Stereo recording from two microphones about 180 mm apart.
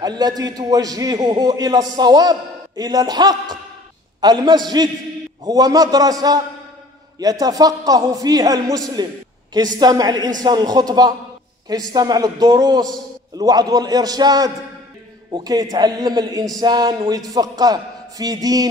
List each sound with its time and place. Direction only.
0.0 s a man's voice: 20° right (ahead or behind)